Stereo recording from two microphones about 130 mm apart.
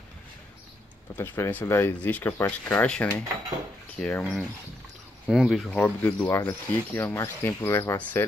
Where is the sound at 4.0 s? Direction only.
10° left (ahead or behind).